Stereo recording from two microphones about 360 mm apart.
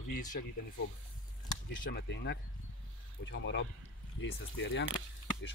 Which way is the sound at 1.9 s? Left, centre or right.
Left.